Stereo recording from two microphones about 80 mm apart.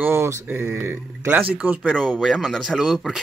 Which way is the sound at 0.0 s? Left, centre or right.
Right.